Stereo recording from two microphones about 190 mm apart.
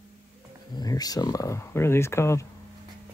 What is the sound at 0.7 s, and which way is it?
Speech, 20° left (ahead or behind).